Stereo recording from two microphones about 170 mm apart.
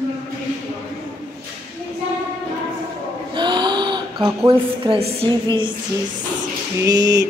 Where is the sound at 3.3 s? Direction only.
25° right (ahead or behind).